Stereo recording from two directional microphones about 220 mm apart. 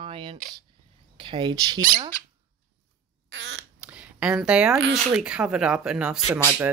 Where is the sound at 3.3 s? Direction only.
55° right (ahead or behind).